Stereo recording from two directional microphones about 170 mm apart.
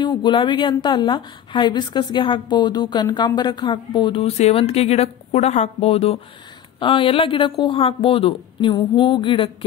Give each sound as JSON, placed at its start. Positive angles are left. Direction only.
{"t": 0.0, "sound": "a woman's voice", "side_deg": 30}